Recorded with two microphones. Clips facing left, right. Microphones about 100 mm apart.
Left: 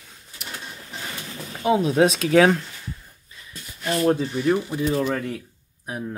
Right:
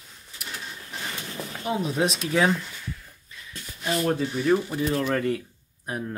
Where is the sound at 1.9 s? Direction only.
85° left.